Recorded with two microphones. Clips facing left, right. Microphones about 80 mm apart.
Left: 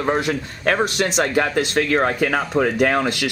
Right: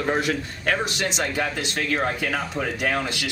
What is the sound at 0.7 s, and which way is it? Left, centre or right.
Speech, left.